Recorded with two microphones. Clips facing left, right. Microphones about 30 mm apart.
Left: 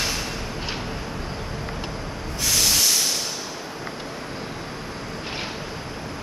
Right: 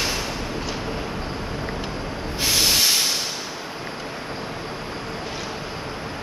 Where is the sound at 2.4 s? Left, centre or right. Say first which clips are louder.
Right 2 dB; right.